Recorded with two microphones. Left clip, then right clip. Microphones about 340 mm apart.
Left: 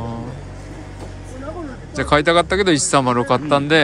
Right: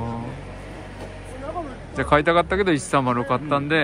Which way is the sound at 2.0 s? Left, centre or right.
Centre.